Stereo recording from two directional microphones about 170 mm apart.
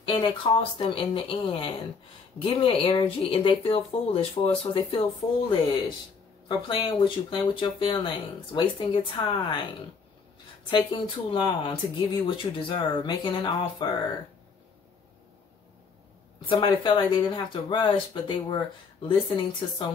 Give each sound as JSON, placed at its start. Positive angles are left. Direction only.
{"t": 0.0, "sound": "speech", "side_deg": 30}
{"t": 10.7, "sound": "speech", "side_deg": 25}
{"t": 16.4, "sound": "speech", "side_deg": 30}